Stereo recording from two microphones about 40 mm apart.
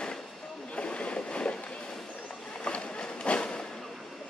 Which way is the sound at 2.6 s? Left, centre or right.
Left.